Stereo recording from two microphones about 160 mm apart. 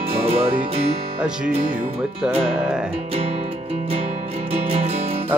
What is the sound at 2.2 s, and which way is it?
Speech, 5° right (ahead or behind).